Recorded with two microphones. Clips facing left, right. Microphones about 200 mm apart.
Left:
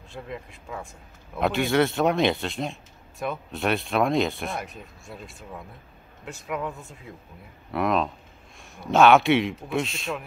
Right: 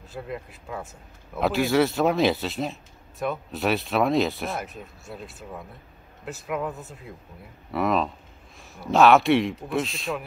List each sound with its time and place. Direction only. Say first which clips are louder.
0.1 s speech: right 2 dB; 5° right (ahead or behind)
7.7 s speech: even; centre (ahead or behind)